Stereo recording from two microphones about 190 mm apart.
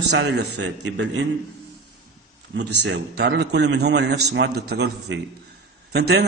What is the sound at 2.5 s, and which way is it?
A man's voice, 65° right (ahead or behind).